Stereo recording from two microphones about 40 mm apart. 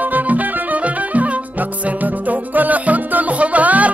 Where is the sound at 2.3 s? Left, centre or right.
Right.